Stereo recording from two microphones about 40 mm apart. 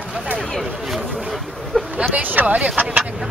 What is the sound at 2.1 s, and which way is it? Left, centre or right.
Speech, right.